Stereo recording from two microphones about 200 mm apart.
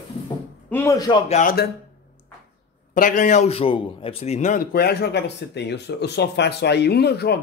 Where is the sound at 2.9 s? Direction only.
40° left (ahead or behind).